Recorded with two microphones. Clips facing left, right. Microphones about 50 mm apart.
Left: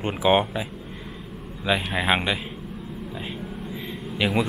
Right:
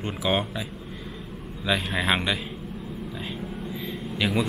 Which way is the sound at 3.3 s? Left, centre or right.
Centre.